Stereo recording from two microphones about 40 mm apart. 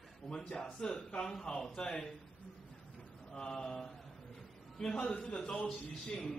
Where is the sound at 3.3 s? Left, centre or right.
Centre.